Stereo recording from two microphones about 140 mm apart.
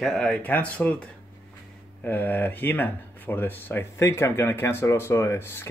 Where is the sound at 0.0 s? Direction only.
5° left (ahead or behind).